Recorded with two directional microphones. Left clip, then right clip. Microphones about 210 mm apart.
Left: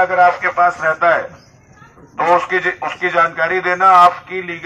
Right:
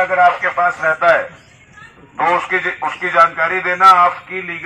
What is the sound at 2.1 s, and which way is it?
A man's voice, 25° left (ahead or behind).